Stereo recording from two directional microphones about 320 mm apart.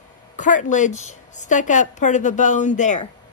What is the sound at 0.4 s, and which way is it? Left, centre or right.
A woman's voice, left.